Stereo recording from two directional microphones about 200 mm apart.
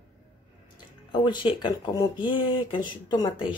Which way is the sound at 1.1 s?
25° left (ahead or behind).